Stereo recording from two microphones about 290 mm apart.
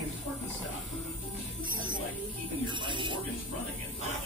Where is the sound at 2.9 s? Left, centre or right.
Centre.